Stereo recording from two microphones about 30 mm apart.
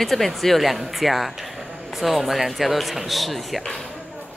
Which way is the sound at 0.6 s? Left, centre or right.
Centre.